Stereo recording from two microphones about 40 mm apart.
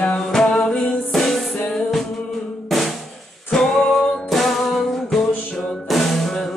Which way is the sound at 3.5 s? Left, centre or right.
Centre.